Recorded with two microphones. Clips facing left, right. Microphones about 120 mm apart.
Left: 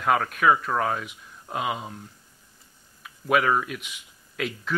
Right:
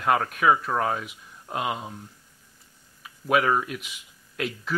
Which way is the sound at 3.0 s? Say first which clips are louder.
Even; centre (ahead or behind).